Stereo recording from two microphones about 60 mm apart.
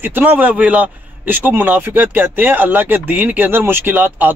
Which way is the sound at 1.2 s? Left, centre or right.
Right.